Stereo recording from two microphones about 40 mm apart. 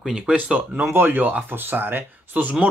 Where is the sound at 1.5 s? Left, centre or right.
Right.